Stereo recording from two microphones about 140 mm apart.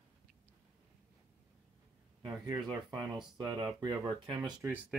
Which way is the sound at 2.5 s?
30° right (ahead or behind).